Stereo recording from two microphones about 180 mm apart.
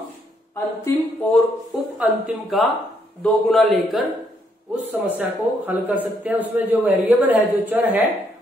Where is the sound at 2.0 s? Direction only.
Centre (ahead or behind).